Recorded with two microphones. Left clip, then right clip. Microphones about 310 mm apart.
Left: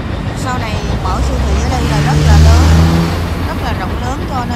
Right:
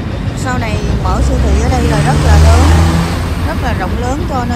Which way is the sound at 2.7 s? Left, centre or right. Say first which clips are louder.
Even; right.